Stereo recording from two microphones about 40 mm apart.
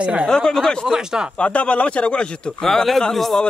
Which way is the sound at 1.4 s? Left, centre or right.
Left.